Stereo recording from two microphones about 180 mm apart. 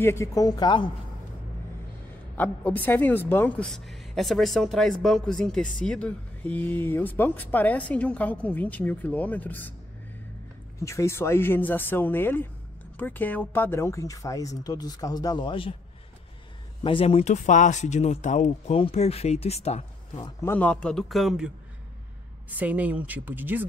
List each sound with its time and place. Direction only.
0.0 s speech: 15° left (ahead or behind)
2.3 s a woman's voice: 10° left (ahead or behind)
10.8 s a woman's voice: 15° left (ahead or behind)
16.8 s speech: 30° left (ahead or behind)
20.2 s speech: 25° left (ahead or behind)
20.5 s a man's voice: 5° left (ahead or behind)
22.5 s speech: 10° right (ahead or behind)